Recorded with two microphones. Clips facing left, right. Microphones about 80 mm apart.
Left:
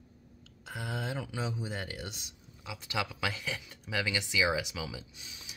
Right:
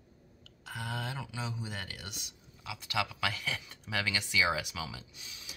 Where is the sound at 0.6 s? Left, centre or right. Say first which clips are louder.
Left 1 dB; centre.